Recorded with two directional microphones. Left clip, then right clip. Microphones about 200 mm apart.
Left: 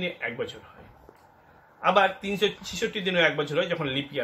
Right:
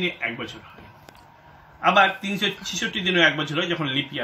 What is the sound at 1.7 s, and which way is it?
Speech, 25° left (ahead or behind).